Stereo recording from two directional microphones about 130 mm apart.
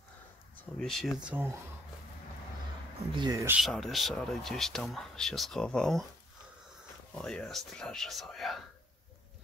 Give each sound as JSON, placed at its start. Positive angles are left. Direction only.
{"t": 0.7, "sound": "speech", "side_deg": 0}
{"t": 1.2, "sound": "speech", "side_deg": -15}
{"t": 3.1, "sound": "speech", "side_deg": -35}
{"t": 3.5, "sound": "speech", "side_deg": 0}
{"t": 7.2, "sound": "speech", "side_deg": 5}